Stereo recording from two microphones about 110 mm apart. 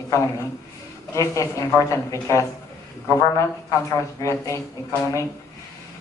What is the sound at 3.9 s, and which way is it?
Speech, 25° left (ahead or behind).